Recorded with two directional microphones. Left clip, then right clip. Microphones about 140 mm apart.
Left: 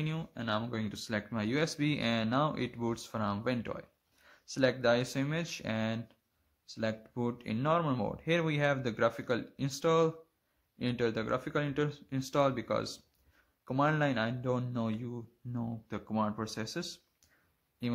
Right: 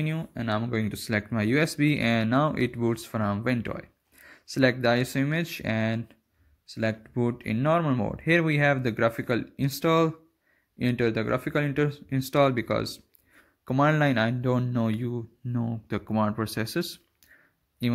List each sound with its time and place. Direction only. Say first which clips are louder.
0.0 s speech: right 7 dB; 5° right (ahead or behind)
0.3 s speech: right 5 dB; 20° right (ahead or behind)